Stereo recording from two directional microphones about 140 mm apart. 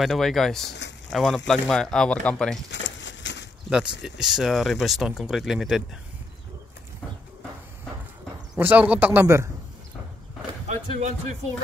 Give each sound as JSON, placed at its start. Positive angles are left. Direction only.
{"t": 0.0, "sound": "speech", "side_deg": 0}
{"t": 3.7, "sound": "speech", "side_deg": -5}
{"t": 8.5, "sound": "a man's voice", "side_deg": -10}
{"t": 10.7, "sound": "speech", "side_deg": -50}